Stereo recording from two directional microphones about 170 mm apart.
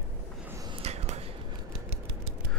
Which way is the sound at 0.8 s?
40° right (ahead or behind).